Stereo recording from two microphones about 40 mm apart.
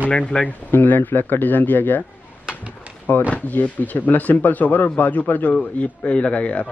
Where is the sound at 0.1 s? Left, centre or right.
Left.